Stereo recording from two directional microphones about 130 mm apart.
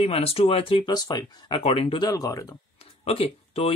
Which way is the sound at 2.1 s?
25° left (ahead or behind).